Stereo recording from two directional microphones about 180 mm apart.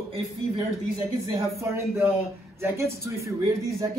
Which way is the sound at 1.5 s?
15° right (ahead or behind).